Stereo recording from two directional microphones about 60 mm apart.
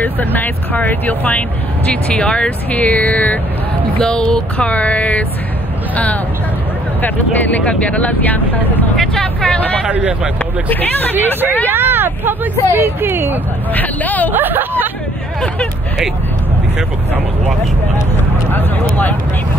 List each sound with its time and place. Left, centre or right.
0.0 s speech: left
4.0 s speech: centre
7.0 s speech: left
8.9 s speech: centre
9.8 s speech: right
10.7 s speech: left
11.7 s speech: right
13.7 s speech: left
14.3 s speech: right